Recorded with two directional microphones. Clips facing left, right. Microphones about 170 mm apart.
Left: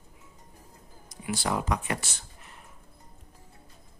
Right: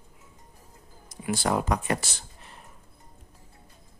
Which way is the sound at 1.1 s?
45° right (ahead or behind).